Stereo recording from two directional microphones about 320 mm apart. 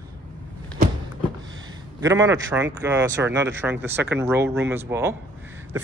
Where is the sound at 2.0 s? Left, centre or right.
Centre.